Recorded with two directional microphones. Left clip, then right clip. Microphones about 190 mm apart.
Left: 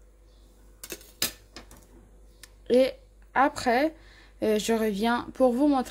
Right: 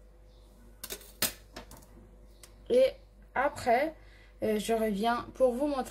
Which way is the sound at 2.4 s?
50° left (ahead or behind).